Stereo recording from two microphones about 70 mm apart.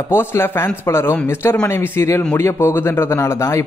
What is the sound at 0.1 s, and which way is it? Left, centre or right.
Speech, left.